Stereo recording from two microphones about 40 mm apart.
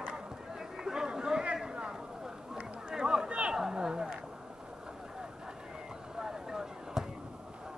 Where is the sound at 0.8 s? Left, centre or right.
Centre.